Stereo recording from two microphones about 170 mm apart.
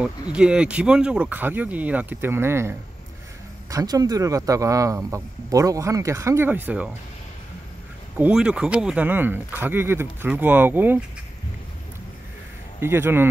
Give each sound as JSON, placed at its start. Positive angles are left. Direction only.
{"t": 0.0, "sound": "speech", "side_deg": -5}
{"t": 3.7, "sound": "speech", "side_deg": -20}
{"t": 8.2, "sound": "speech", "side_deg": -5}
{"t": 12.8, "sound": "speech", "side_deg": -15}